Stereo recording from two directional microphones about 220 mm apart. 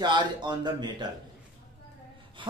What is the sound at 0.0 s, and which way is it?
A man's voice, 20° right (ahead or behind).